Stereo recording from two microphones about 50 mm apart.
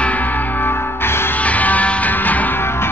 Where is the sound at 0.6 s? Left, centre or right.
Left.